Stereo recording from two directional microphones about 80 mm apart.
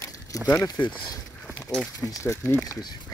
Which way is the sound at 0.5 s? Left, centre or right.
Left.